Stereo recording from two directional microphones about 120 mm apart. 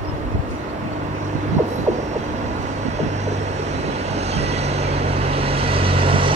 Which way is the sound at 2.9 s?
70° right (ahead or behind).